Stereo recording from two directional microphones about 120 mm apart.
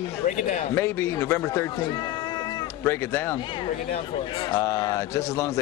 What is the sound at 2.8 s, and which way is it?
Speech, 20° left (ahead or behind).